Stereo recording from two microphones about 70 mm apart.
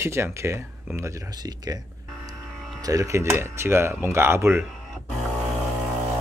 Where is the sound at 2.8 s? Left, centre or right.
Right.